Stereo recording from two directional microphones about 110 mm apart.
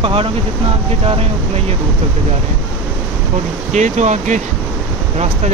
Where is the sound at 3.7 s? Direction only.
90° right.